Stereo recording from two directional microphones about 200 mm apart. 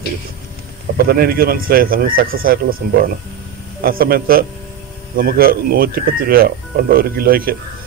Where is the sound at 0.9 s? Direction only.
50° right (ahead or behind).